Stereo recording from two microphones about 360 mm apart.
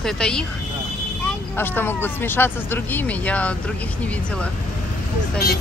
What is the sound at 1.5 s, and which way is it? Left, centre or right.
Speech, centre.